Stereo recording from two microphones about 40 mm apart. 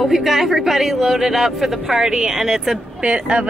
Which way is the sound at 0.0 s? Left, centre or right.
Centre.